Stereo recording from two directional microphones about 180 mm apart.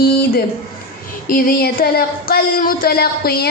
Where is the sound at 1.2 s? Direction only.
50° left (ahead or behind).